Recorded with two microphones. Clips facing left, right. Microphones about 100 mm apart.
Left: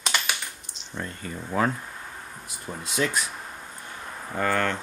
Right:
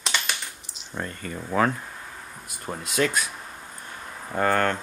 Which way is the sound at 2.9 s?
60° right (ahead or behind).